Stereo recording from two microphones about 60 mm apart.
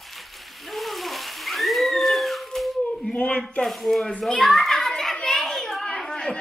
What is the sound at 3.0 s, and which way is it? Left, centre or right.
Speech, centre.